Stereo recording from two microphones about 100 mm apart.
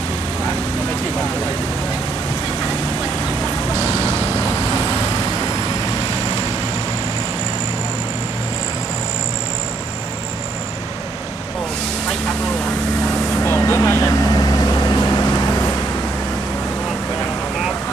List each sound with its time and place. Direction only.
13.4 s vehicle: 25° left (ahead or behind)